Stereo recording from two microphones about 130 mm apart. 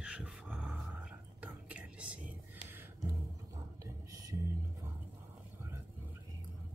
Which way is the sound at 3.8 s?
25° right (ahead or behind).